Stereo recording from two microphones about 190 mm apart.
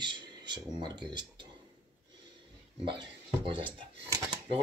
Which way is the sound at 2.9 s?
25° right (ahead or behind).